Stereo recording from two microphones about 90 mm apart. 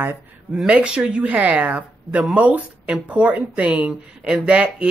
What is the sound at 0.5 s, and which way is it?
Speech, 10° right (ahead or behind).